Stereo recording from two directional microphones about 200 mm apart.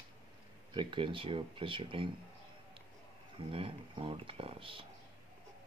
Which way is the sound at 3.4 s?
25° right (ahead or behind).